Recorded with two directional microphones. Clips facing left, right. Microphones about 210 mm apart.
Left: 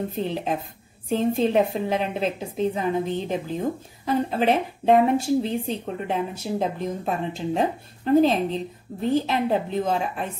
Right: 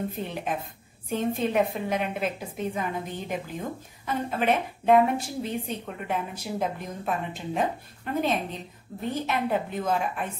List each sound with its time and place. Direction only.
0.2 s a woman's voice: 30° left (ahead or behind)